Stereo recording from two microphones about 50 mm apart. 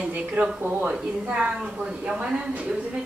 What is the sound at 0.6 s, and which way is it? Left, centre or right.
Speech, right.